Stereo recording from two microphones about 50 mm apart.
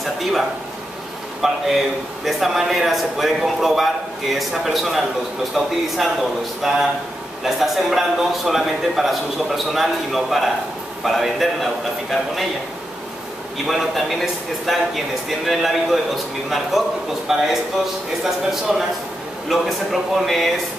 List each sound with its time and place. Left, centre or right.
0.0 s a man's voice: centre
13.7 s a man's voice: centre